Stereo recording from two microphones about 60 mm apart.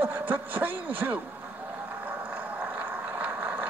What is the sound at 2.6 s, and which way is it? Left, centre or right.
Vehicle, right.